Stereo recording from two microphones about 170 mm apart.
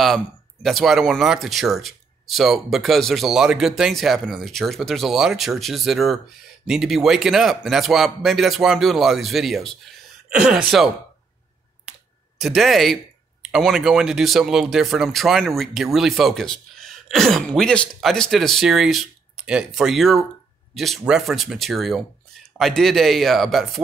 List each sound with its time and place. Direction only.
0.0 s speech: centre (ahead or behind)
11.9 s computer keyboard: 5° right (ahead or behind)
12.4 s speech: centre (ahead or behind)